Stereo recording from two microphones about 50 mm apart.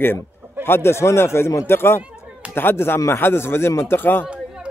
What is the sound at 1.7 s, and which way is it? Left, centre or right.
A man's voice, left.